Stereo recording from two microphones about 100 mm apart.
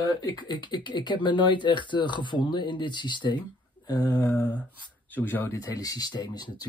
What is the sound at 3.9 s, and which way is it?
Speech, 40° left (ahead or behind).